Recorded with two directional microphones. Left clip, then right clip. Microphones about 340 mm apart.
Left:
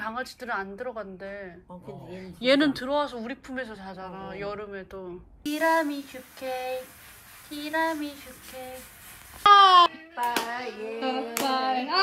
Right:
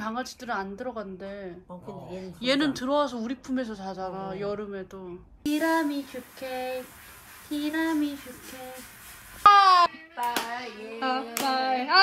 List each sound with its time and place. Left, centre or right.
0.0 s speech: centre
9.4 s music: right
9.9 s music: centre